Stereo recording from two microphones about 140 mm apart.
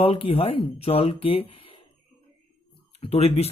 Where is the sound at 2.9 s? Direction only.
45° left (ahead or behind).